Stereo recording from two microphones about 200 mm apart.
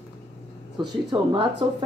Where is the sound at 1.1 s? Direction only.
25° right (ahead or behind).